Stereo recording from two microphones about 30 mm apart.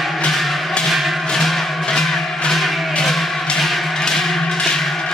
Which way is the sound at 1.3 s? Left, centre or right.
Centre.